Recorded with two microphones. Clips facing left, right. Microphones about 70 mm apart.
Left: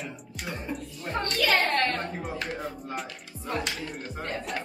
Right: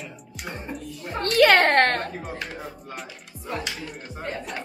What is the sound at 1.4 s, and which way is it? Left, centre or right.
Speech, right.